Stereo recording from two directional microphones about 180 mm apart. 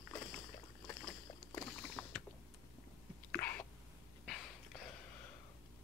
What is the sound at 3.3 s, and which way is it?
Throat clearing, 10° left (ahead or behind).